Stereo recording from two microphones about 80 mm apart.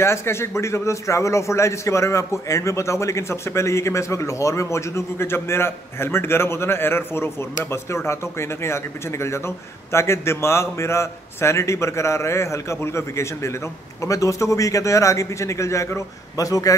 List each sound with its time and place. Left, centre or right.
0.0 s a man's voice: left